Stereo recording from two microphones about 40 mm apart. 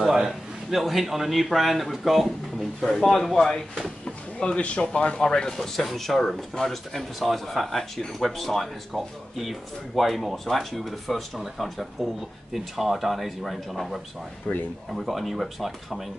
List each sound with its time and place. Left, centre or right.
0.0 s speech: centre
4.0 s speech: left
5.6 s speech: centre
14.5 s speech: left
14.9 s speech: centre